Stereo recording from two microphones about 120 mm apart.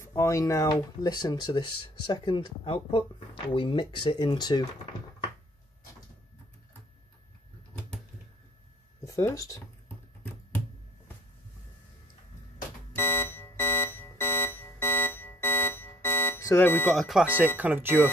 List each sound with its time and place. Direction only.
0.0 s speech: 25° left (ahead or behind)
9.0 s speech: 30° left (ahead or behind)
12.9 s alarm clock: 20° left (ahead or behind)
16.9 s speech: centre (ahead or behind); by 18.0 s 15° right (ahead or behind)